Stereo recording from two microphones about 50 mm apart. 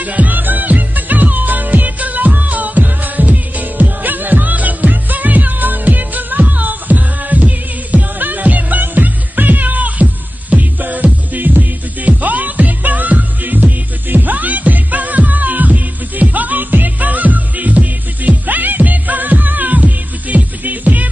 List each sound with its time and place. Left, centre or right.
0.0 s music: right